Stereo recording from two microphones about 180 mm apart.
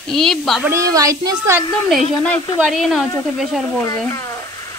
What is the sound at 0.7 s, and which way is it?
Speech, 15° right (ahead or behind).